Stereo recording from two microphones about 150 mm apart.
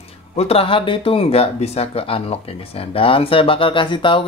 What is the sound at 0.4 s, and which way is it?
Speech, 40° left (ahead or behind).